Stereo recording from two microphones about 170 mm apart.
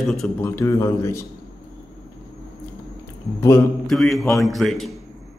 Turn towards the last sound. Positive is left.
turn(degrees=0)  # may be behind; listen again after turning